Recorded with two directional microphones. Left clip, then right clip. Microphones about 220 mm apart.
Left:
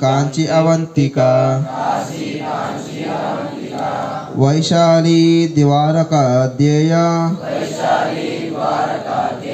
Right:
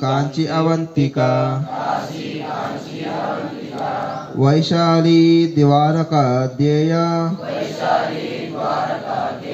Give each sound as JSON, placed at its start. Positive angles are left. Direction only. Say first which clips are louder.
{"t": 0.4, "sound": "mantra", "louder": "left 4 dB", "side_deg": 40}
{"t": 1.0, "sound": "mantra", "louder": "left 5 dB", "side_deg": 0}
{"t": 4.4, "sound": "mantra", "louder": "left 3 dB", "side_deg": 40}